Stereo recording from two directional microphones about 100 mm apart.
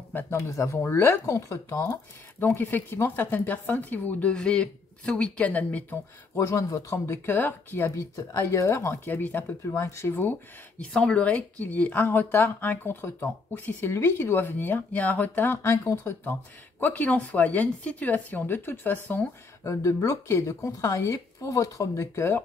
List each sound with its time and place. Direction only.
0.1 s speech: 20° left (ahead or behind)
0.4 s speech: 30° left (ahead or behind); by 5.9 s 15° left (ahead or behind)
6.3 s speech: 30° left (ahead or behind)
7.2 s speech: 20° left (ahead or behind)
10.8 s speech: 10° left (ahead or behind); by 16.3 s 30° left (ahead or behind)
16.8 s speech: 15° left (ahead or behind)
19.7 s speech: 30° left (ahead or behind)